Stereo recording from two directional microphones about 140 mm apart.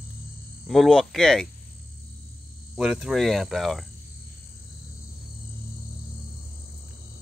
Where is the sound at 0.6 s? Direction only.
Centre (ahead or behind).